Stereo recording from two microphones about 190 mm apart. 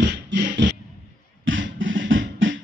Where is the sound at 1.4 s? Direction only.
85° right.